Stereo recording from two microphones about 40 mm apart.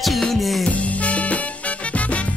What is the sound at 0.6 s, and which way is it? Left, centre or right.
Music, left.